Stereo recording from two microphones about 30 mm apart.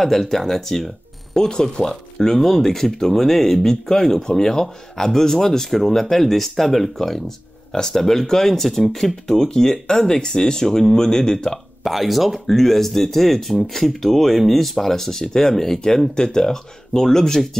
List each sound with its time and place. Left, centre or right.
0.0 s speech: centre
1.3 s speech: left
2.3 s speech: centre
11.8 s speech: centre